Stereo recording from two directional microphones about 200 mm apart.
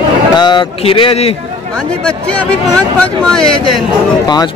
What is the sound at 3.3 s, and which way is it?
Speech, centre (ahead or behind).